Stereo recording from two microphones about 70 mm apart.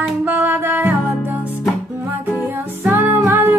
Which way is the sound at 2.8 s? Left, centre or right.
Right.